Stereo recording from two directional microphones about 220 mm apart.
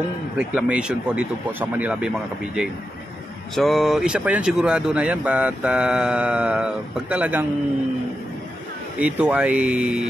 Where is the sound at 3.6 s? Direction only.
Centre (ahead or behind).